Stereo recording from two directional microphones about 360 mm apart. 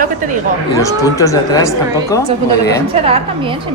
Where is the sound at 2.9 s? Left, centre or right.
Centre.